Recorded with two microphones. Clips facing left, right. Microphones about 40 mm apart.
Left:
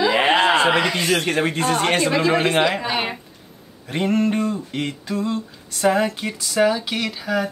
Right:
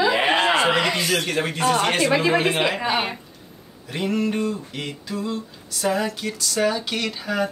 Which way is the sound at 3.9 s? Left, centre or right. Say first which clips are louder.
Left 3 dB; left.